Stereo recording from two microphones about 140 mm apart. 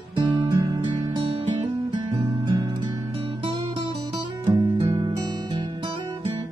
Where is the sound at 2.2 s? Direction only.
25° right (ahead or behind).